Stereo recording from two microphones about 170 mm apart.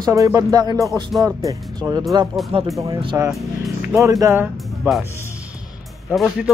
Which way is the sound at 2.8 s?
20° right (ahead or behind).